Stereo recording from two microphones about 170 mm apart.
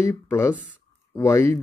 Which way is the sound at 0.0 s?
15° left (ahead or behind).